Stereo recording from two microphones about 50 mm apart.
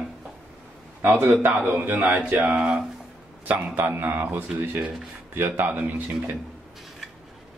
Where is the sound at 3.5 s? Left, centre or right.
Right.